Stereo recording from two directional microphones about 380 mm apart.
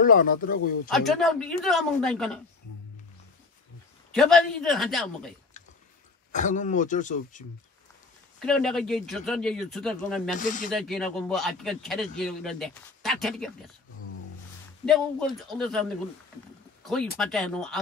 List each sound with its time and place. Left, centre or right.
0.0 s speech: left
0.8 s speech: centre
4.1 s speech: centre
6.3 s speech: centre
8.4 s speech: centre
10.3 s speech: centre
10.7 s speech: centre
14.9 s speech: centre